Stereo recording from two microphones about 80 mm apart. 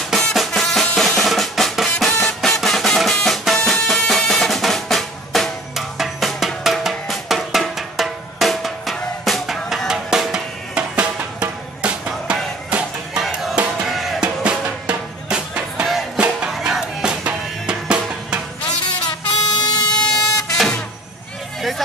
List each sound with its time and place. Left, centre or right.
0.1 s drum: centre
11.8 s music: centre
13.8 s music: centre
14.2 s music: centre
19.0 s vehicle: left
21.5 s hubbub: centre